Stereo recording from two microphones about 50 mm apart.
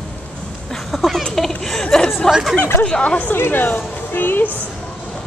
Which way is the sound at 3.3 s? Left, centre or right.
Left.